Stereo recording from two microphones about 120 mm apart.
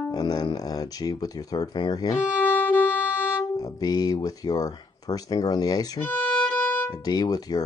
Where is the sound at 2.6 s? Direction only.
15° left (ahead or behind).